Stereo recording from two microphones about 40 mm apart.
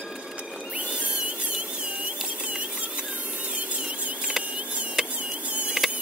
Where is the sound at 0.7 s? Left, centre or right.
Right.